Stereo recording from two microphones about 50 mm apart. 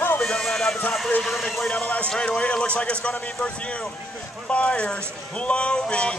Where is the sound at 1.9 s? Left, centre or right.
Left.